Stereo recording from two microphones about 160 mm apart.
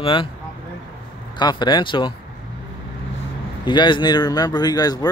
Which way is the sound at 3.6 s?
30° left (ahead or behind).